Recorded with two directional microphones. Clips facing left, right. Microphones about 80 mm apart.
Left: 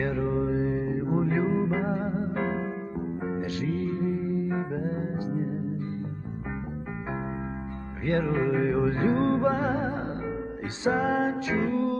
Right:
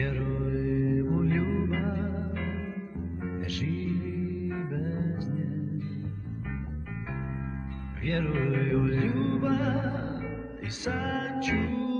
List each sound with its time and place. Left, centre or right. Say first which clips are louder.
0.0 s mantra: left 5 dB; left
0.3 s music: left 3 dB; left
3.3 s music: left 2 dB; left
8.1 s music: left 4 dB; left